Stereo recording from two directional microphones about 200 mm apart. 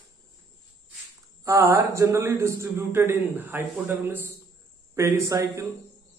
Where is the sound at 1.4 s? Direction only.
15° right (ahead or behind).